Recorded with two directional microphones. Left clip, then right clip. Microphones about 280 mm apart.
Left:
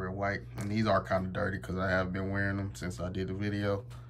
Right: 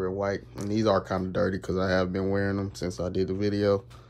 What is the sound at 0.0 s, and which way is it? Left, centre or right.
Speech, centre.